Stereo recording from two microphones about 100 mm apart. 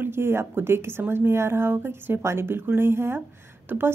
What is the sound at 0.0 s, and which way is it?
A woman's voice, 25° right (ahead or behind).